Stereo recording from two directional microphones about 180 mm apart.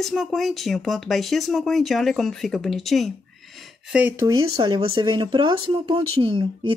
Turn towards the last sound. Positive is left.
turn(degrees=-30)  # may be behind; listen again after turning